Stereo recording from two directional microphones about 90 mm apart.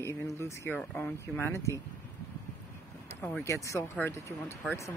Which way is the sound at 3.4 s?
35° left (ahead or behind).